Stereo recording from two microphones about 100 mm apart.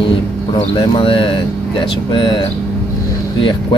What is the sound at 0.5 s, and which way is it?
Speech, 55° left (ahead or behind).